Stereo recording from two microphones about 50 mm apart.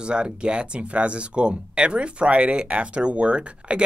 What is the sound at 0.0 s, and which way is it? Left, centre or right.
Speech, centre.